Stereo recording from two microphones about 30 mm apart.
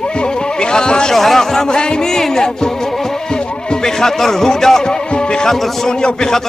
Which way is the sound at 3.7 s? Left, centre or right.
Centre.